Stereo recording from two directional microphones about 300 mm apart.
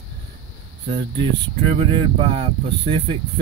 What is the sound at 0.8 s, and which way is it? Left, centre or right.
Speech, centre.